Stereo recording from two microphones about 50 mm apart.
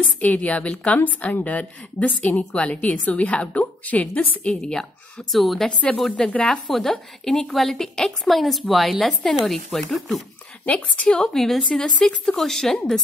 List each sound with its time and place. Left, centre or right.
0.2 s a woman's voice: left
4.5 s a woman's voice: centre
5.3 s a woman's voice: centre
6.1 s speech: centre
6.7 s a woman's voice: centre
10.6 s a woman's voice: left
11.1 s speech: centre